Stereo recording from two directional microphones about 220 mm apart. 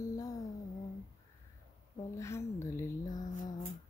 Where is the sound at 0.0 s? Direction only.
15° left (ahead or behind).